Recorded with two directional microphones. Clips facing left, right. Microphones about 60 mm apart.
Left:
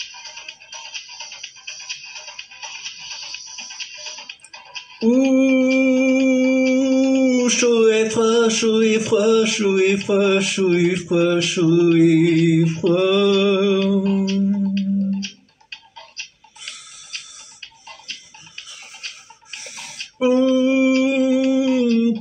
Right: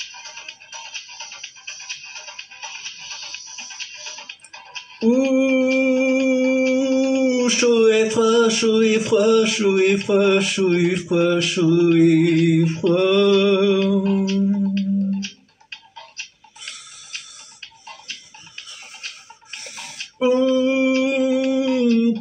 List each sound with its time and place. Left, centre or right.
0.1 s music: centre
5.0 s a sound: centre
14.3 s a sound: centre
14.7 s music: right
16.6 s music: centre
18.6 s music: centre